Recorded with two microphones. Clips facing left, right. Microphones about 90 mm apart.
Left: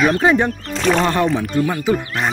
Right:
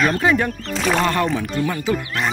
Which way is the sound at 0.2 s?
25° left (ahead or behind).